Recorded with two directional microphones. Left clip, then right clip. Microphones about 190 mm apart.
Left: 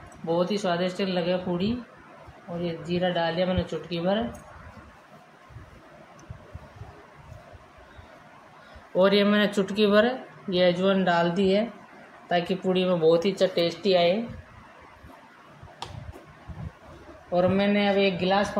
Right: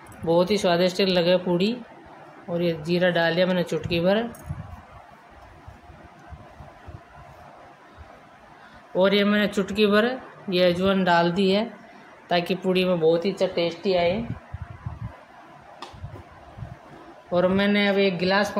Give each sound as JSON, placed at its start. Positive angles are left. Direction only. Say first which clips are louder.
{"t": 0.3, "sound": "speech", "louder": "right 5 dB", "side_deg": -35}
{"t": 2.9, "sound": "speech", "louder": "right 4 dB", "side_deg": -35}
{"t": 8.9, "sound": "speech", "louder": "even", "side_deg": -5}
{"t": 13.0, "sound": "speech", "louder": "left 1 dB", "side_deg": 5}
{"t": 13.6, "sound": "a woman's voice", "louder": "even", "side_deg": 15}
{"t": 17.3, "sound": "speech", "louder": "right 2 dB", "side_deg": -20}